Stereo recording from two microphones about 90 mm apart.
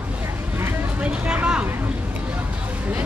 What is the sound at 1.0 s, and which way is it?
Vehicle, 10° right (ahead or behind).